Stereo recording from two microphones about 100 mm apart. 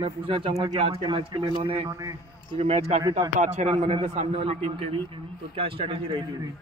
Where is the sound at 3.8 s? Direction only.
80° right; by 6.2 s 60° right (ahead or behind).